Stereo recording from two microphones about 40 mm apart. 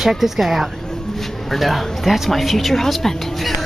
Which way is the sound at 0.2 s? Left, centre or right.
Centre.